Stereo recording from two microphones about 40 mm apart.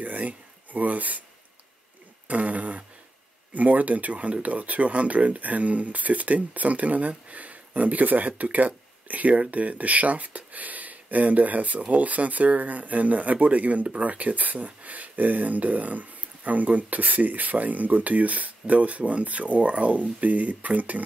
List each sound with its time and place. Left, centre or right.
0.0 s speech: right
2.2 s a sound: right
3.5 s speech: right